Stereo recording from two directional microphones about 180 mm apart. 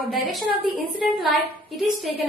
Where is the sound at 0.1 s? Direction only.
Centre (ahead or behind).